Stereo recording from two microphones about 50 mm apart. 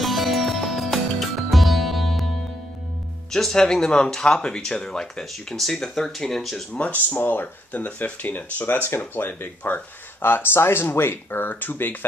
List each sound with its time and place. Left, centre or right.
0.0 s music: centre
3.3 s speech: centre
6.7 s speech: left
8.8 s speech: left